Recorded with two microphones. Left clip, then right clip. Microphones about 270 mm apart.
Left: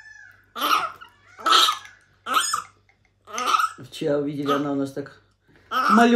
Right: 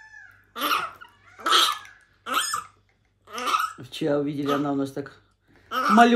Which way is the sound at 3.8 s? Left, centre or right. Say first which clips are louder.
Left 1 dB; centre.